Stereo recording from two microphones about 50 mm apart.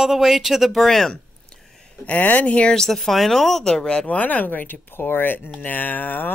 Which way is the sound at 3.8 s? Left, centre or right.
Centre.